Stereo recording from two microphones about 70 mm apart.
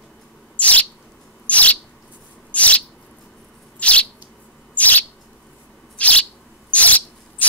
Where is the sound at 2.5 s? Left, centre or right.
Centre.